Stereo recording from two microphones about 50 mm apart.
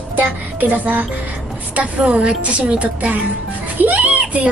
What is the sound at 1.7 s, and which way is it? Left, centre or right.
A woman's voice, right.